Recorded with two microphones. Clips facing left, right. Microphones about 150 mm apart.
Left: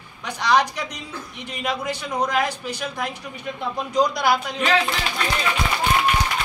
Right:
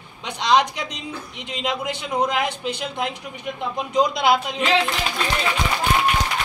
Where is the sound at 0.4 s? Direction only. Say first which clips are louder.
Right 1 dB; 20° right (ahead or behind).